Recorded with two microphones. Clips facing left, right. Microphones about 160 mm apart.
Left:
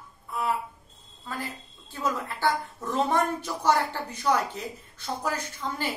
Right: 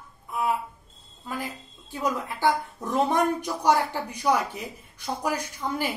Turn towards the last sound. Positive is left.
turn(degrees=-15)  # may be behind; listen again after turning